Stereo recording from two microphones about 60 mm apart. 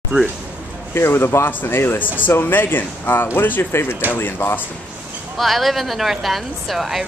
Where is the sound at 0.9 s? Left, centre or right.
Left.